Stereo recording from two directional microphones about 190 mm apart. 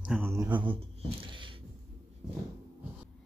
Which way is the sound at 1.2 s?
25° right (ahead or behind).